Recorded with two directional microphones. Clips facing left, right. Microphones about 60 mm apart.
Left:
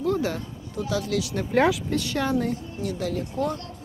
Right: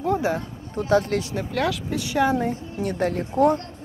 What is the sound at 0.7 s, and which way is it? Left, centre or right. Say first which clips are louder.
Speech: right 6 dB; right.